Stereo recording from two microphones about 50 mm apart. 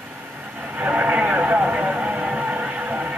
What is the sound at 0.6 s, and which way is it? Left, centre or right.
Music, right.